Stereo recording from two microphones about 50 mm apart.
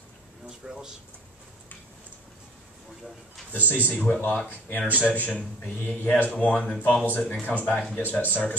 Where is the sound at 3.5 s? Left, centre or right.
Left.